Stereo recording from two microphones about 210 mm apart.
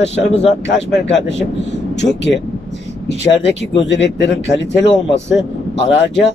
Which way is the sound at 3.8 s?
60° left (ahead or behind).